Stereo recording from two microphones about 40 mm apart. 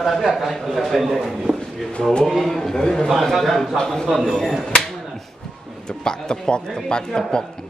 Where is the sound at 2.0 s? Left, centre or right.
Left.